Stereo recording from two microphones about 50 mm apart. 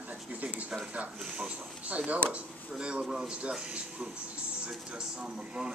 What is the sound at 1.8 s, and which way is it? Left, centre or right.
A man's voice, right.